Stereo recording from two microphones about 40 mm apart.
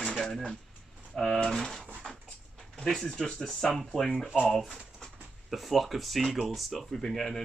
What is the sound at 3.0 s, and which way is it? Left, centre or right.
Speech, left.